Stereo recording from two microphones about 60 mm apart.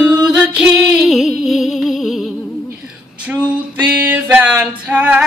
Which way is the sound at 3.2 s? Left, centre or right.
Centre.